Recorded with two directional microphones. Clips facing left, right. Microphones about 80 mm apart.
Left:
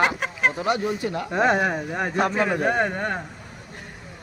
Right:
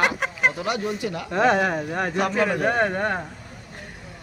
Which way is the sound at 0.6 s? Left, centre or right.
Left.